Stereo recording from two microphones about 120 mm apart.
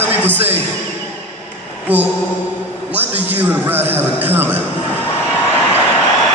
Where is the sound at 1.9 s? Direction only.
15° right (ahead or behind).